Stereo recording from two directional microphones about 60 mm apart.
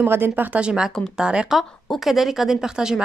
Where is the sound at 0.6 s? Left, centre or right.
Centre.